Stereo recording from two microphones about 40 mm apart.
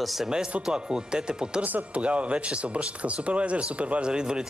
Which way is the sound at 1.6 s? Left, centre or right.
Right.